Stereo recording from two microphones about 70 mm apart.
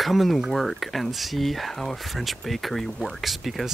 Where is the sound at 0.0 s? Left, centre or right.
Centre.